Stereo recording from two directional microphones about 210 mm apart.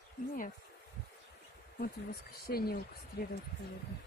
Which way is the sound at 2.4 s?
45° left (ahead or behind).